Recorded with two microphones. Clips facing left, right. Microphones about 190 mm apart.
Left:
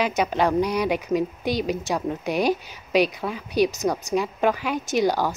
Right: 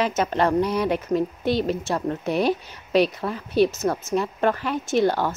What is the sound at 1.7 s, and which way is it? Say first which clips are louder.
Speech: right 1 dB; centre (ahead or behind).